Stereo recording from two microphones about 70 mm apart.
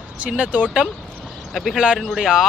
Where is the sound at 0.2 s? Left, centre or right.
Centre.